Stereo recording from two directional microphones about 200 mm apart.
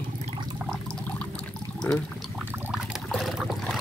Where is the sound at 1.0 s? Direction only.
5° left (ahead or behind).